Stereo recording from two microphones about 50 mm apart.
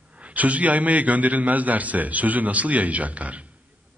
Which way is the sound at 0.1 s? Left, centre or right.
Right.